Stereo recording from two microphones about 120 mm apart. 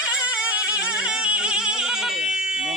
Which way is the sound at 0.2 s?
10° right (ahead or behind).